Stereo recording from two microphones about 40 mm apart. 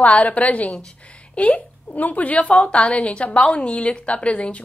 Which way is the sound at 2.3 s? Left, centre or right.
Left.